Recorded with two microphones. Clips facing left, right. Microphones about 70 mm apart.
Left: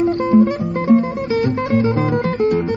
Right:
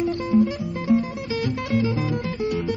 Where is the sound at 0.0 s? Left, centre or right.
Left.